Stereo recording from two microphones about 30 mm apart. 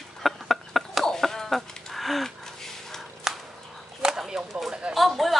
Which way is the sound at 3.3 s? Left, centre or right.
Centre.